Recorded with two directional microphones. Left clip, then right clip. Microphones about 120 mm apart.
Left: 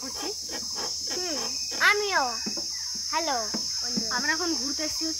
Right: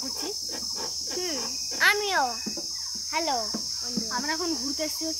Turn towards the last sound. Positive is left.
turn(degrees=-15)  # may be behind; listen again after turning